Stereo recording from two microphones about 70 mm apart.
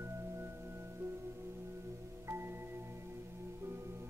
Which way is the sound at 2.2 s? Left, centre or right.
Right.